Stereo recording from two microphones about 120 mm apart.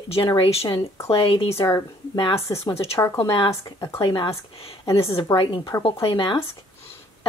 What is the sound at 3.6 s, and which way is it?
Speech, 25° left (ahead or behind).